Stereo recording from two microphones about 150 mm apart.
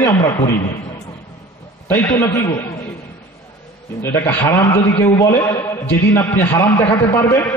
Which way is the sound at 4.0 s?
15° left (ahead or behind).